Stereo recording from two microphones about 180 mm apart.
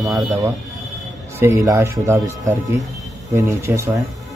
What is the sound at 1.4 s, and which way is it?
A man's voice, 15° right (ahead or behind).